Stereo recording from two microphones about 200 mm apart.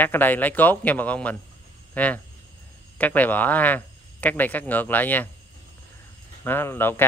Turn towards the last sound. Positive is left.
turn(degrees=10)  # may be behind; listen again after turning